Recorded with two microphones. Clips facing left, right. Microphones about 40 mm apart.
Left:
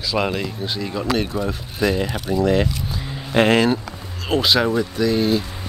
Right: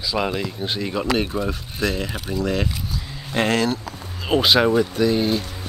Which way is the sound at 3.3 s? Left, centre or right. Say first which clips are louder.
Left 5 dB; centre.